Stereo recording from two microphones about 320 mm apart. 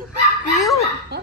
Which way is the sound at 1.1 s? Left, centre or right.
Right.